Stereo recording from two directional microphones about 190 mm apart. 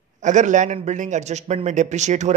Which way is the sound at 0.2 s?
40° right (ahead or behind).